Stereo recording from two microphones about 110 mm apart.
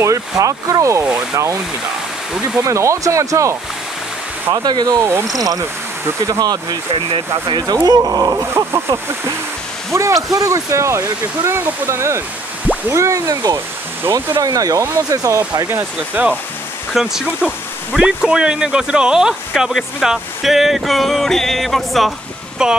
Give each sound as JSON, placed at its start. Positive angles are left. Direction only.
{"t": 0.0, "sound": "speech", "side_deg": -30}
{"t": 2.6, "sound": "speech", "side_deg": -25}
{"t": 4.6, "sound": "speech", "side_deg": -40}
{"t": 6.0, "sound": "speech", "side_deg": -30}
{"t": 6.9, "sound": "speech", "side_deg": -55}
{"t": 16.2, "sound": "speech", "side_deg": -15}